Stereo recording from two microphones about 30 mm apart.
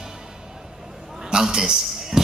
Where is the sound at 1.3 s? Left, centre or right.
Centre.